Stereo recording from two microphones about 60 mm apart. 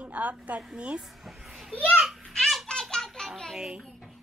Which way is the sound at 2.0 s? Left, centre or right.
Centre.